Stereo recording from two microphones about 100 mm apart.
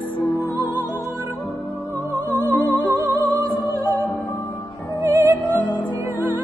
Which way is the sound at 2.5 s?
20° left (ahead or behind).